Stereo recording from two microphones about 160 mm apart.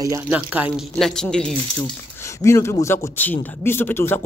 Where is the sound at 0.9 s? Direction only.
5° left (ahead or behind).